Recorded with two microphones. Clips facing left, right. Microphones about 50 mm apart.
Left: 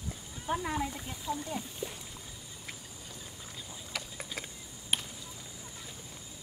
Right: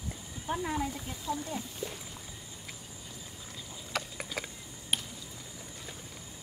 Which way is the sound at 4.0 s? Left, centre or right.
Right.